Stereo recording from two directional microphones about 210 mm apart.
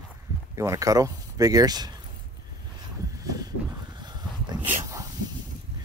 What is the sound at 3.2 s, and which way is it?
Dog, 15° right (ahead or behind).